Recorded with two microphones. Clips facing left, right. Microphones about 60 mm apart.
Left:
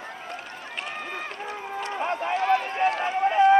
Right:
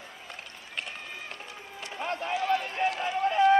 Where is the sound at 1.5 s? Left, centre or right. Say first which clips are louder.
Left 10 dB; left.